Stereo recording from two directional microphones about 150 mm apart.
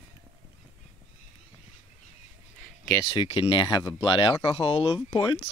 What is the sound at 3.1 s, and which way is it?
Speech, 35° left (ahead or behind).